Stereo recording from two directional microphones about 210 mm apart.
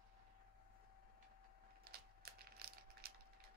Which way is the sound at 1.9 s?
45° right (ahead or behind).